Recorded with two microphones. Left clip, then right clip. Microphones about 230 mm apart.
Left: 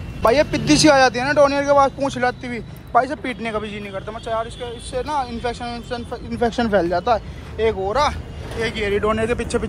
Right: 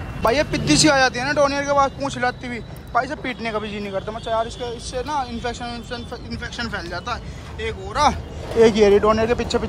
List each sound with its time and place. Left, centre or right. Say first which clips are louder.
0.2 s speech: left 3 dB; centre
8.1 s speech: right 5 dB; right
9.0 s speech: right 2 dB; centre